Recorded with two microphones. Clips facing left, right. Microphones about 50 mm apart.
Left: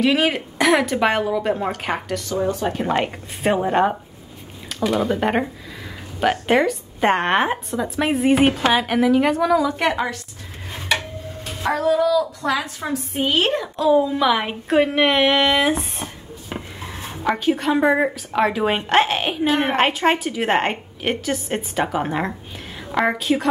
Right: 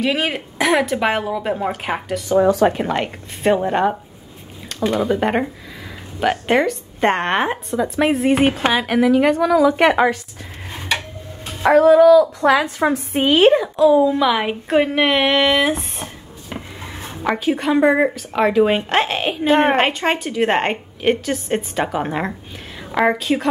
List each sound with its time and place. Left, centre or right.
0.0 s a woman's voice: centre
9.8 s a sound: right
11.6 s a sound: centre
12.4 s a woman's voice: right
13.3 s speech: centre
13.7 s a woman's voice: centre
19.4 s a woman's voice: right
19.7 s a woman's voice: centre